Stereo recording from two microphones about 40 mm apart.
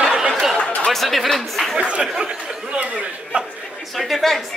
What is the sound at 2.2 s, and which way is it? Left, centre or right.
Speech, right.